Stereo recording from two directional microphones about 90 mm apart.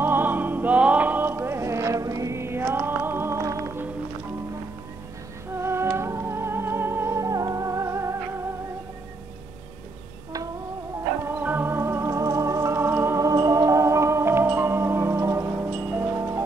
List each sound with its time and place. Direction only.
0.0 s music: 20° right (ahead or behind)
5.6 s music: 30° right (ahead or behind)
11.2 s music: 25° right (ahead or behind)